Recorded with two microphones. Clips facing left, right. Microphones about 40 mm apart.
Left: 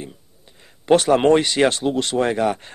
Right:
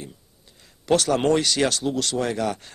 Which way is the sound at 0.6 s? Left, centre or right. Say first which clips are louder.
Left 5 dB; left.